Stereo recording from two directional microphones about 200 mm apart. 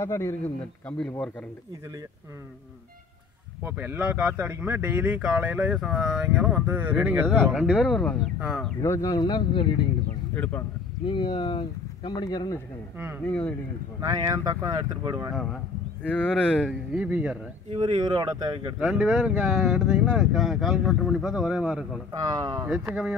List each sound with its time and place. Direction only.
0.0 s speech: 15° left (ahead or behind)
3.6 s speech: 10° right (ahead or behind)
7.2 s speech: 5° left (ahead or behind)
8.8 s speech: 15° left (ahead or behind)
10.3 s speech: 10° left (ahead or behind)
11.1 s speech: 25° left (ahead or behind)
12.9 s speech: 10° right (ahead or behind)
13.2 s speech: 5° left (ahead or behind)
14.1 s speech: 15° right (ahead or behind)
15.3 s speech: 5° left (ahead or behind)
17.6 s speech: 20° right (ahead or behind)
18.8 s speech: centre (ahead or behind)
22.3 s speech: 20° right (ahead or behind)
22.7 s speech: 5° right (ahead or behind)